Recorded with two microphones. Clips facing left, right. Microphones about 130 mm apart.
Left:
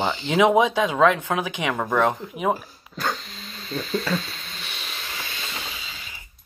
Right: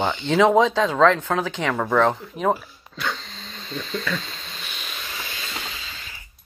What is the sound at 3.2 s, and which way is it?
Dog, 30° right (ahead or behind).